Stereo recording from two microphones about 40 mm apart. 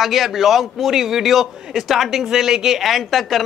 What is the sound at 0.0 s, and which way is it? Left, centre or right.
A man's voice, centre.